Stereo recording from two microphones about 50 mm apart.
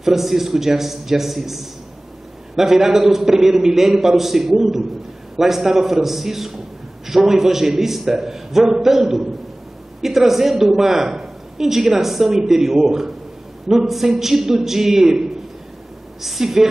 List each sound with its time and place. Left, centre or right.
0.0 s a man's voice: centre